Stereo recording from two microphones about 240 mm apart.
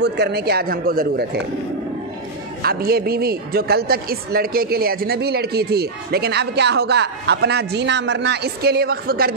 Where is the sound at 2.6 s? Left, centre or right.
Right.